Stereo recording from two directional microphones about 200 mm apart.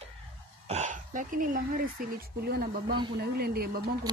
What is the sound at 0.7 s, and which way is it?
Speech, 35° right (ahead or behind).